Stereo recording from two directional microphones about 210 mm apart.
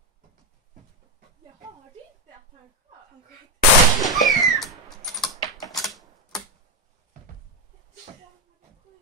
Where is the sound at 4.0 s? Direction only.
Centre (ahead or behind).